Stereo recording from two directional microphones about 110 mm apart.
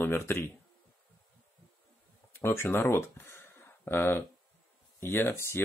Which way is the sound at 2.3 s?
20° left (ahead or behind).